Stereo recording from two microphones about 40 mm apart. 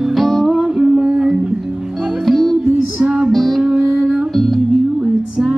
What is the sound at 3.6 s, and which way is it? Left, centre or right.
Music, centre.